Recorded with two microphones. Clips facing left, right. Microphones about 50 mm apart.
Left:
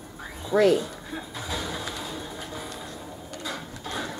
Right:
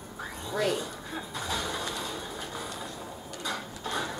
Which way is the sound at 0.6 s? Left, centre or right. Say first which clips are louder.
Left 8 dB; centre.